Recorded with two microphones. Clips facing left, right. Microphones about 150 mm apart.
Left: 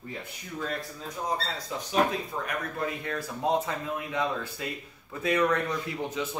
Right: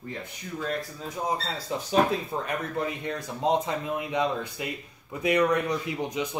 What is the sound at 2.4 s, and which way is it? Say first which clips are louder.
A man's voice: right 2 dB; 20° right (ahead or behind).